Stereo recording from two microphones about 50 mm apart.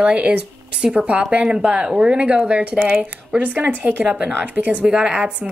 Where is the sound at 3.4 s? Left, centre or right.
Right.